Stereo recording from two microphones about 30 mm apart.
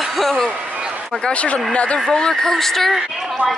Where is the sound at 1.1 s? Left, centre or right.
Centre.